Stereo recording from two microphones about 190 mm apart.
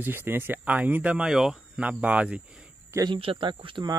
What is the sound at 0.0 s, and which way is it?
Speech, 10° right (ahead or behind).